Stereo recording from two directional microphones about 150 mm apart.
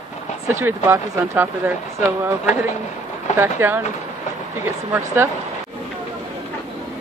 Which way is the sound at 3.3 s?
15° right (ahead or behind).